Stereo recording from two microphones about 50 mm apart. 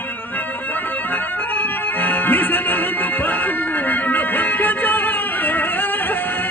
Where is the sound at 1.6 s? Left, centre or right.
Left.